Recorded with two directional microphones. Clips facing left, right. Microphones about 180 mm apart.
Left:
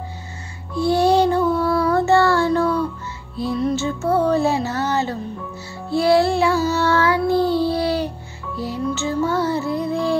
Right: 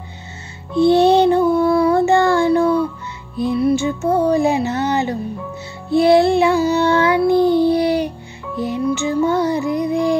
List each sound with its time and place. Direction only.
0.7 s child singing: 25° right (ahead or behind)
3.3 s music: 15° right (ahead or behind)
5.9 s child singing: 20° right (ahead or behind)
8.5 s music: 20° right (ahead or behind)